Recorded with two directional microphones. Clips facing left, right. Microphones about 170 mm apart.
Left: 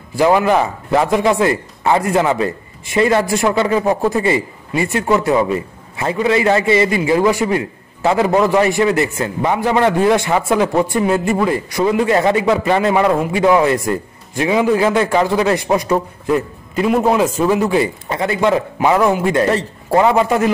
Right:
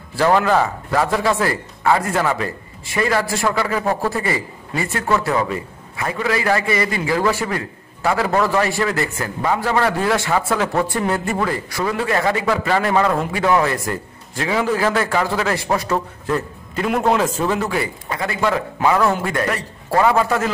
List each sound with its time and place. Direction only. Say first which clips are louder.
0.1 s a man's voice: left 3 dB; 15° left (ahead or behind)